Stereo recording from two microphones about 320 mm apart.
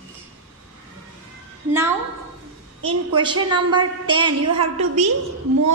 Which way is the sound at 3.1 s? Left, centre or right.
Centre.